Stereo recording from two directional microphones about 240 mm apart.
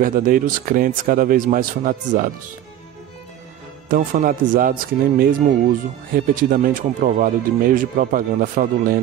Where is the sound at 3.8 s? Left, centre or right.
Right.